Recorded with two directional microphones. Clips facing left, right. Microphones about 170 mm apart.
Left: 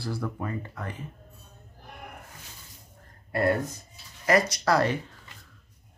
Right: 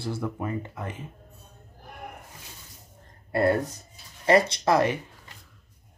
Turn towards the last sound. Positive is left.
turn(degrees=-20)  # may be behind; listen again after turning